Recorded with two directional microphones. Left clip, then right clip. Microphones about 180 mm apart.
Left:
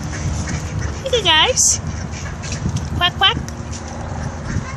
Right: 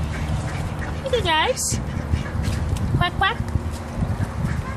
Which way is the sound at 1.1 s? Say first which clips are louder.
Left 6 dB; 25° left (ahead or behind).